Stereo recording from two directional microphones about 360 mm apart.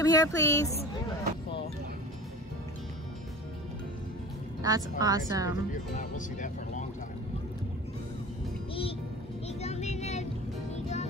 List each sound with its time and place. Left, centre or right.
0.0 s speech: centre
4.6 s speech: centre
5.7 s speech: left
9.5 s music: centre